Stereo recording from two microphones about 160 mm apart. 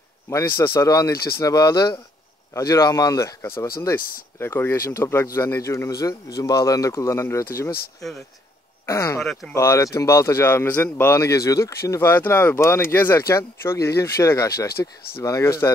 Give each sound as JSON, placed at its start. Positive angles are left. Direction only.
{"t": 0.3, "sound": "speech", "side_deg": 20}
{"t": 8.8, "sound": "speech", "side_deg": 20}
{"t": 9.2, "sound": "speech", "side_deg": 0}
{"t": 9.5, "sound": "a man's voice", "side_deg": 20}